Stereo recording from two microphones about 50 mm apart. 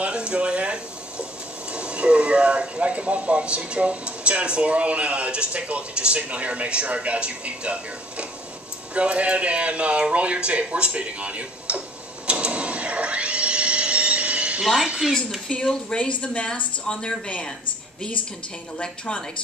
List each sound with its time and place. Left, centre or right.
0.0 s a sound: centre
1.7 s speech: right
12.3 s a sound: right
14.6 s a woman's voice: centre
15.6 s speech: centre
18.8 s speech: centre